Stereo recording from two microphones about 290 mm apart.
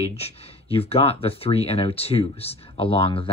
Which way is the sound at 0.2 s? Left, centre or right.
Left.